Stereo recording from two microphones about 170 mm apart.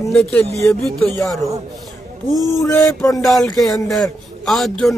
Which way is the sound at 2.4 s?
20° left (ahead or behind).